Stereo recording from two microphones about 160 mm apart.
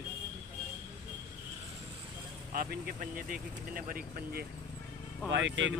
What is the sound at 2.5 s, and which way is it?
Speech, 65° right (ahead or behind).